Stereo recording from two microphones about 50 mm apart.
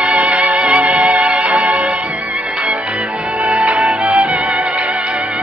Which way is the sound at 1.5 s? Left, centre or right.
Right.